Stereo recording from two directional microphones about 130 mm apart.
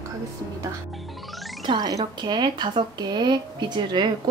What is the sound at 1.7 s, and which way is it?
Speech, 30° right (ahead or behind).